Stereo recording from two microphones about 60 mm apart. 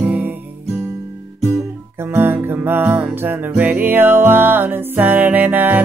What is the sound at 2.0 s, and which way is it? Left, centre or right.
Music, right.